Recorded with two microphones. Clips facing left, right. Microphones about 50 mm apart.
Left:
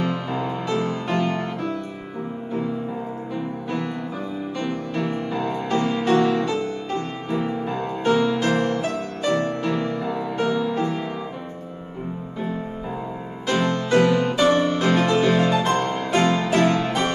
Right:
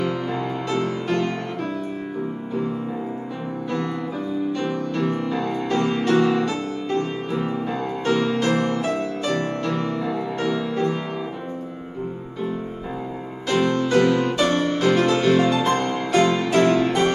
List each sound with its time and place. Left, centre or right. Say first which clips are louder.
0.3 s music: even; centre
5.0 s music: right 1 dB; centre
13.5 s music: right 1 dB; centre
15.4 s music: even; centre